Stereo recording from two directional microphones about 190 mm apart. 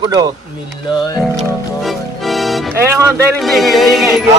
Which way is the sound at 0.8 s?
20° left (ahead or behind).